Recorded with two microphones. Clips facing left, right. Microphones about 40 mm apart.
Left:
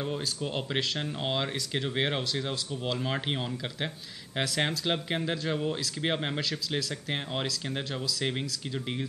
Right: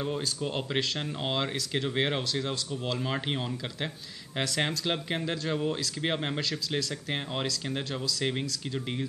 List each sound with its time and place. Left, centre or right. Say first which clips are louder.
0.0 s speech: right 1 dB; centre